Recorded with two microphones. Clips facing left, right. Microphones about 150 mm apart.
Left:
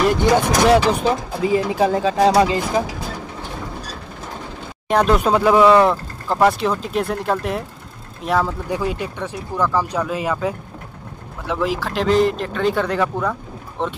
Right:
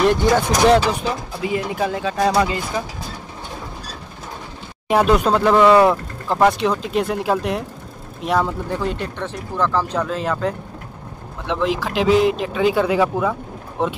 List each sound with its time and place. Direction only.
0.0 s speech: 5° left (ahead or behind)
1.4 s speech: 30° left (ahead or behind)
4.8 s speech: 5° right (ahead or behind)
8.6 s speech: 10° left (ahead or behind); by 13.9 s 5° right (ahead or behind)